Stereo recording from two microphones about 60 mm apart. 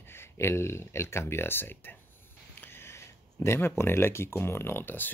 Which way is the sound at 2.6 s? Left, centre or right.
Left.